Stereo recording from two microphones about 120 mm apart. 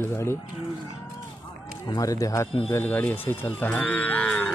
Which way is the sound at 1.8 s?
30° left (ahead or behind).